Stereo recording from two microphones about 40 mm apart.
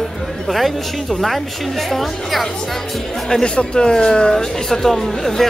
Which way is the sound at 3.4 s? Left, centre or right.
Left.